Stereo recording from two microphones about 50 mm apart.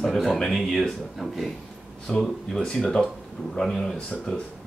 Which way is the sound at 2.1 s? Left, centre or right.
Centre.